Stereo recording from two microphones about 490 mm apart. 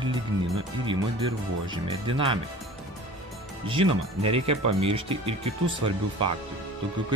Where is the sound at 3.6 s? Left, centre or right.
Centre.